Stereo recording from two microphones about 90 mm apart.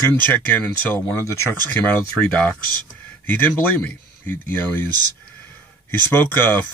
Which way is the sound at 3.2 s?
20° left (ahead or behind).